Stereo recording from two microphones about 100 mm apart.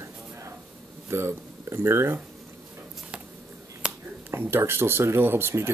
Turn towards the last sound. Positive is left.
turn(degrees=-25)  # may be behind; listen again after turning